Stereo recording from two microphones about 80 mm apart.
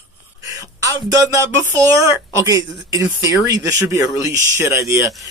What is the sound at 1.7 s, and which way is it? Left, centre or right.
Speech, right.